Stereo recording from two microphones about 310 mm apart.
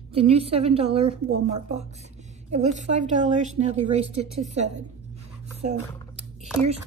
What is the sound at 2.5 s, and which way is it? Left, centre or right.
A woman's voice, right.